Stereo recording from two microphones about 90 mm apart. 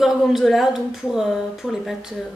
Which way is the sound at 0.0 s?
5° right (ahead or behind).